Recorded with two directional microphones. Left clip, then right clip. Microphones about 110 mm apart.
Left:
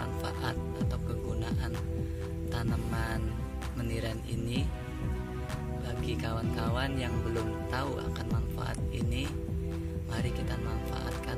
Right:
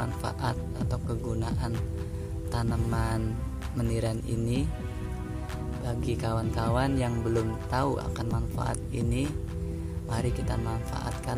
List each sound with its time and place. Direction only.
0.0 s music: 10° right (ahead or behind)
2.6 s speech: 10° right (ahead or behind)
5.9 s speech: 20° right (ahead or behind)